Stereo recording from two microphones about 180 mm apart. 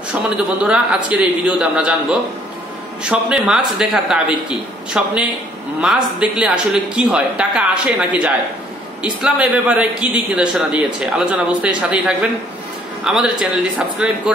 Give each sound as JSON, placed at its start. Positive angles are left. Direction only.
{"t": 0.1, "sound": "a man's voice", "side_deg": -5}